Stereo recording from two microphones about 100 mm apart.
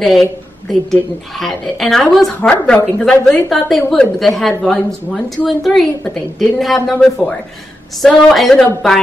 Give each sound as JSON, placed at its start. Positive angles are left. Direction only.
{"t": 0.0, "sound": "a woman's voice", "side_deg": 0}